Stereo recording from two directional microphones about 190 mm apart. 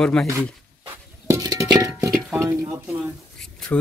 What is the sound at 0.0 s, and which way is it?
Speech, 5° left (ahead or behind).